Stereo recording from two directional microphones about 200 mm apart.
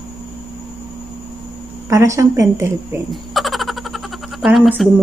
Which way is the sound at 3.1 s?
Centre (ahead or behind).